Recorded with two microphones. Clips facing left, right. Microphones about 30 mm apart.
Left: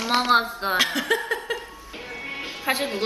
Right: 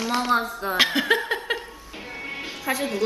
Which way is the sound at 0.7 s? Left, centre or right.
Right.